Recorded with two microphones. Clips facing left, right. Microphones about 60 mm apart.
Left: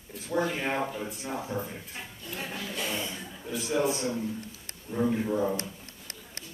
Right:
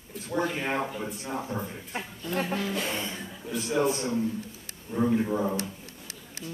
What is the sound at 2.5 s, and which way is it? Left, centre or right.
Speech, right.